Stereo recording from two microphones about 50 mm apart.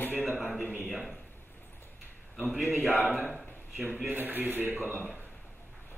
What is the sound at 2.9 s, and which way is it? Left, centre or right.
A man's voice, right.